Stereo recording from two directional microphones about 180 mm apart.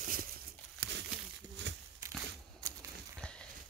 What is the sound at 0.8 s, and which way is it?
Crumpling, 60° right (ahead or behind).